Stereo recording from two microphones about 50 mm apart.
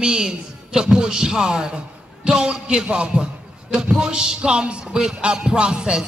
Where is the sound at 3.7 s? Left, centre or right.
Centre.